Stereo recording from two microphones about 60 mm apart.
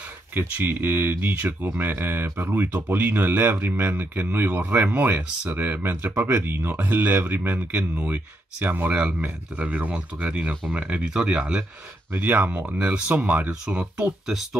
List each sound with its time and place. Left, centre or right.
0.3 s speech: right; by 11.6 s centre
12.2 s speech: right
13.5 s speech: centre